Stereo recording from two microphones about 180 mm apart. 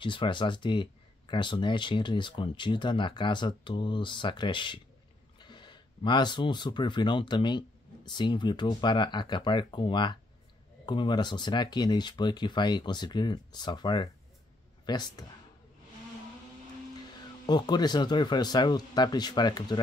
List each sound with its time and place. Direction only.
0.0 s speech: 25° left (ahead or behind)
17.5 s speech: 25° left (ahead or behind)